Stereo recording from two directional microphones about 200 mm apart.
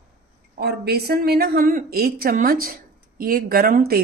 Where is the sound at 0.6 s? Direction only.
55° right (ahead or behind).